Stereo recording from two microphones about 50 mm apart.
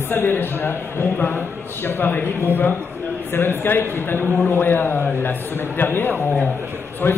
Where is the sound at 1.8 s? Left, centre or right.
Left.